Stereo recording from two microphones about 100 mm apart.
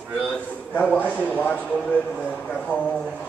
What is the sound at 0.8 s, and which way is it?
Speech, 15° left (ahead or behind).